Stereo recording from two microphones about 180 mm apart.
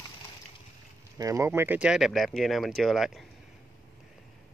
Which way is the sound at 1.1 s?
15° right (ahead or behind).